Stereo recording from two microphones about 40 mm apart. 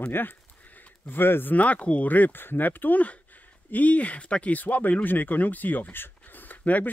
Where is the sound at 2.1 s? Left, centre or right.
Left.